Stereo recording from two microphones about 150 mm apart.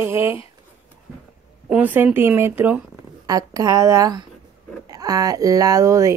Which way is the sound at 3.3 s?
25° right (ahead or behind).